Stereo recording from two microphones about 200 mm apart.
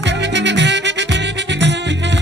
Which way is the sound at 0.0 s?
60° right (ahead or behind).